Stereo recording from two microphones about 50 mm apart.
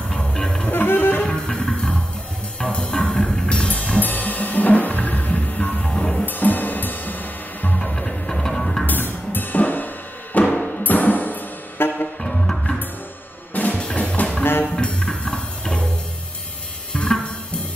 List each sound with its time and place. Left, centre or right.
0.1 s music: centre
0.7 s music: left
1.2 s music: centre
6.2 s music: left
7.8 s music: left
8.8 s music: left
10.4 s music: centre
10.8 s music: left
12.2 s music: centre
13.5 s music: left
13.7 s music: left
14.4 s music: left
14.8 s music: centre
16.9 s music: centre